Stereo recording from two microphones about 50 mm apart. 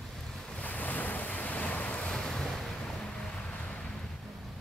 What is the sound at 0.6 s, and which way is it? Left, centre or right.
Waves, left.